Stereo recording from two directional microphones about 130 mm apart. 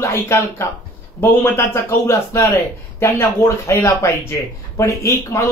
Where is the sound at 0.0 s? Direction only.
20° left (ahead or behind).